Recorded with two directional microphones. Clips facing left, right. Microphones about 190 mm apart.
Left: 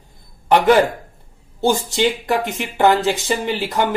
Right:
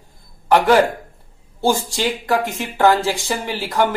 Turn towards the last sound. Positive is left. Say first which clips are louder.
# even
turn(degrees=20)  # may be behind; listen again after turning